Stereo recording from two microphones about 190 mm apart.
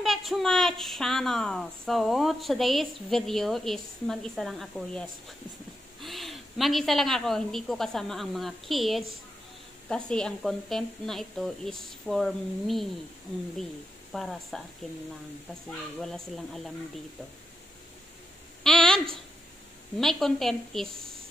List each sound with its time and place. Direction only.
0.0 s a woman's voice: centre (ahead or behind)
14.1 s a woman's voice: centre (ahead or behind)
16.0 s a woman's voice: centre (ahead or behind)
18.6 s a sound: 5° left (ahead or behind)
20.0 s a woman's voice: centre (ahead or behind)